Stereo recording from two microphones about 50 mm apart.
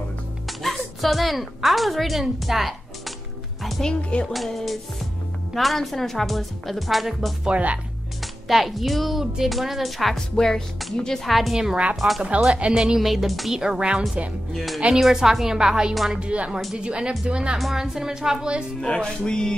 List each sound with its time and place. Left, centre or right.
0.5 s a woman's voice: centre
3.8 s speech: centre
4.3 s a woman's voice: centre
7.4 s speech: right
8.5 s a woman's voice: centre
10.1 s speech: centre
11.2 s a woman's voice: centre
11.5 s a woman's voice: centre
13.6 s a woman's voice: centre
14.5 s a woman's voice: centre; by 17.6 s right
17.6 s a woman's voice: centre
18.8 s speech: centre